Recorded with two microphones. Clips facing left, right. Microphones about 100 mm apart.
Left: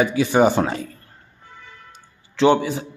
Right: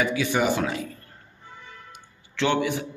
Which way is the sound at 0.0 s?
30° left (ahead or behind).